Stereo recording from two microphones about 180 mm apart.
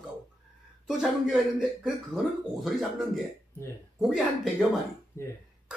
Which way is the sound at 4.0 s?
Centre (ahead or behind).